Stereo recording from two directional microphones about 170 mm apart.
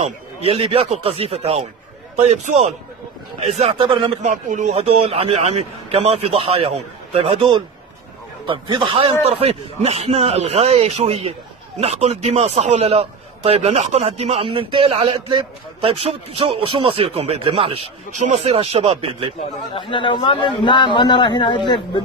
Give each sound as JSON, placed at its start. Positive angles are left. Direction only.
{"t": 0.0, "sound": "a man's voice", "side_deg": -35}
{"t": 4.2, "sound": "a man's voice", "side_deg": -45}
{"t": 19.7, "sound": "a man's voice", "side_deg": 30}